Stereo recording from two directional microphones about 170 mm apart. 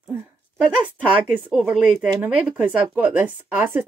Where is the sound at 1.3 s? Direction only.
10° right (ahead or behind).